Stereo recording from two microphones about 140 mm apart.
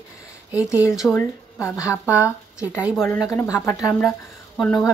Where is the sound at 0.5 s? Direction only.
10° right (ahead or behind).